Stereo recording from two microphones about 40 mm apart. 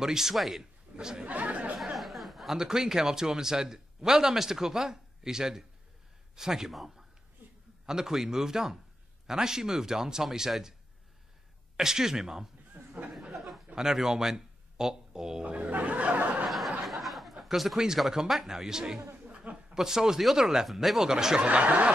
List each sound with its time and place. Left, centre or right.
0.0 s speech: centre
0.9 s chatter: right
2.0 s a sound: centre
2.5 s speech: centre
7.8 s speech: centre
11.7 s speech: centre
12.8 s a sound: right
13.7 s speech: centre
15.4 s speech: right
15.7 s a sound: right
16.4 s a sound: centre
18.2 s speech: centre
21.4 s speech: right